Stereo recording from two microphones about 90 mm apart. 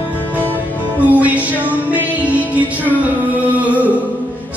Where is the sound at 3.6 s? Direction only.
15° right (ahead or behind).